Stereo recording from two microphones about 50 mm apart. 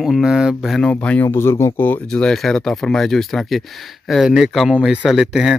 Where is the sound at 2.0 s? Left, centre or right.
Centre.